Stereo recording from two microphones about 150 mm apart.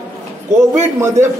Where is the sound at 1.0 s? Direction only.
15° right (ahead or behind).